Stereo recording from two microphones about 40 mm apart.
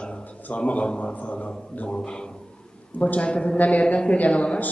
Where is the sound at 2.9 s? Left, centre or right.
Left.